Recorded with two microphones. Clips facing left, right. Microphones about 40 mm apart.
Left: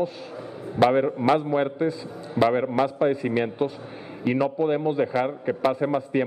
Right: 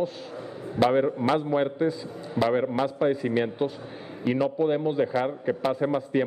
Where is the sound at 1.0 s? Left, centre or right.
Centre.